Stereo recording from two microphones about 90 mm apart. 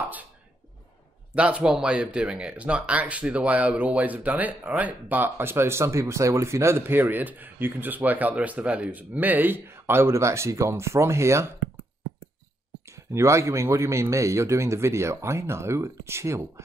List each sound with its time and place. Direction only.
1.3 s speech: 15° right (ahead or behind); by 11.5 s 30° right (ahead or behind)
12.8 s a man's voice: 35° right (ahead or behind)